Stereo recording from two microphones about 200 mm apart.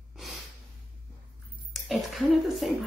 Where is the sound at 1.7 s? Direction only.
Centre (ahead or behind).